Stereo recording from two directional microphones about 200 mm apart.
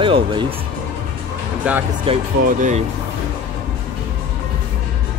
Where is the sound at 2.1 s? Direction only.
25° right (ahead or behind).